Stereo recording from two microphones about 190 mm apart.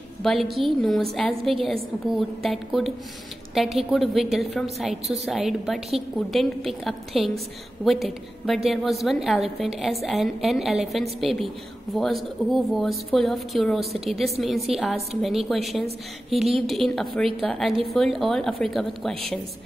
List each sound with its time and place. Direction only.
0.2 s a woman's voice: centre (ahead or behind)